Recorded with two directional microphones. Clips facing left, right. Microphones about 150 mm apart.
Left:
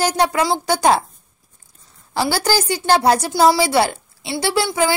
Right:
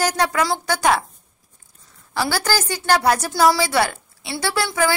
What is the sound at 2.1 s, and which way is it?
A woman's voice, 30° left (ahead or behind).